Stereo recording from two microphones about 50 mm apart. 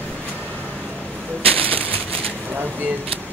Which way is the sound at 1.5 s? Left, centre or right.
Left.